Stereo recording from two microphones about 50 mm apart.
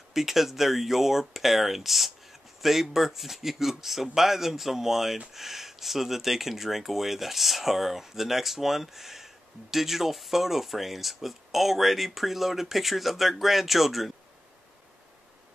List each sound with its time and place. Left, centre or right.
0.1 s speech: centre